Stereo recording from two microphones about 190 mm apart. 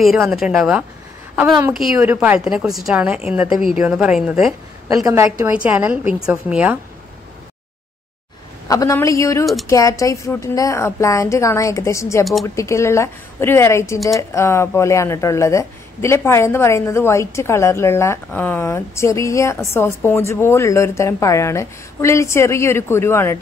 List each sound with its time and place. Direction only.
0.0 s a woman's voice: centre (ahead or behind)
4.8 s a woman's voice: 20° right (ahead or behind)
8.6 s a woman's voice: 15° left (ahead or behind)